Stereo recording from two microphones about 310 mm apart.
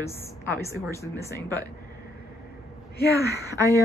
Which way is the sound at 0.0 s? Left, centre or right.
Centre.